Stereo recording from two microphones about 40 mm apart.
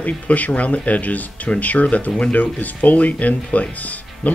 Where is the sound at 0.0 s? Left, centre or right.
Left.